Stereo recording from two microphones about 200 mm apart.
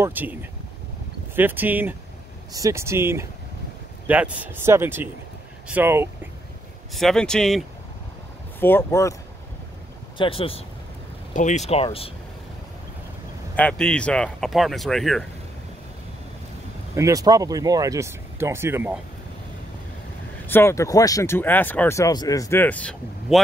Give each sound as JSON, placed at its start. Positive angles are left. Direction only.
{"t": 0.0, "sound": "speech", "side_deg": -10}
{"t": 6.9, "sound": "speech", "side_deg": 0}
{"t": 10.1, "sound": "speech", "side_deg": 25}
{"t": 13.6, "sound": "speech", "side_deg": 5}
{"t": 16.9, "sound": "speech", "side_deg": -15}
{"t": 20.4, "sound": "speech", "side_deg": 10}